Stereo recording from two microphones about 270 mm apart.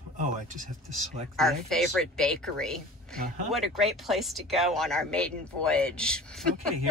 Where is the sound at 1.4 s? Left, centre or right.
Centre.